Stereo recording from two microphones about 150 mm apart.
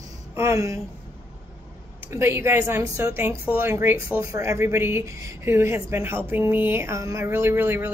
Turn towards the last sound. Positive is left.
turn(degrees=-15)  # may be behind; listen again after turning